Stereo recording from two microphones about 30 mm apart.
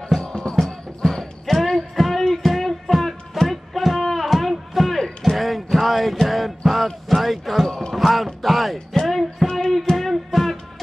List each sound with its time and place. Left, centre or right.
0.2 s music: left
0.6 s music: centre
2.1 s music: centre
2.4 s music: centre
4.0 s a sound: centre
4.9 s music: centre
5.3 s a sound: centre
8.4 s music: centre